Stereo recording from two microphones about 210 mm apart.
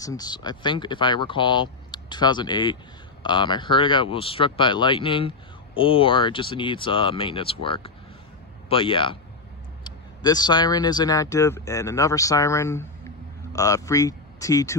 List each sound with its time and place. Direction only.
0.0 s speech: 15° left (ahead or behind)